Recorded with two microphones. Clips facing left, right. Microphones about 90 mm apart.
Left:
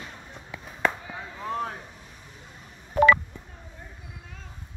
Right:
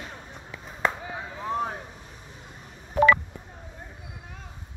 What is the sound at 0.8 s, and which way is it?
Chop, 15° right (ahead or behind).